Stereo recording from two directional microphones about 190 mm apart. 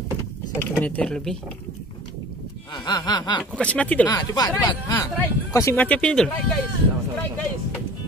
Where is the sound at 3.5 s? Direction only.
5° left (ahead or behind).